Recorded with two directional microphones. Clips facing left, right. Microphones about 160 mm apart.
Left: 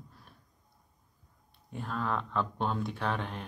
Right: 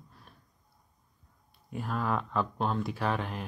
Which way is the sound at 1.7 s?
5° right (ahead or behind).